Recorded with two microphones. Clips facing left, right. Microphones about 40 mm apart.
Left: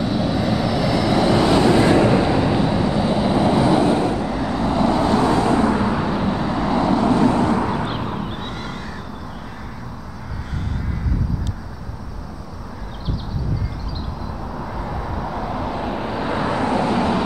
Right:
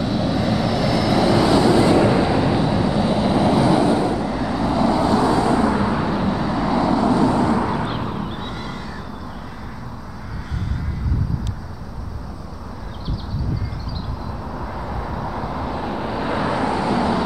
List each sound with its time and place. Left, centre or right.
0.0 s vehicle: centre
1.5 s vehicle: left
2.0 s vehicle: centre
3.9 s vehicle: left
4.2 s vehicle: centre
5.0 s vehicle: left
5.8 s vehicle: centre
6.9 s vehicle: left
7.2 s vehicle: left
7.8 s vehicle: centre
8.3 s a sound: left
14.5 s vehicle: centre
16.5 s vehicle: left